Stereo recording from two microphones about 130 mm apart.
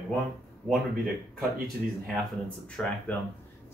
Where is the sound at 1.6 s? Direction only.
Centre (ahead or behind).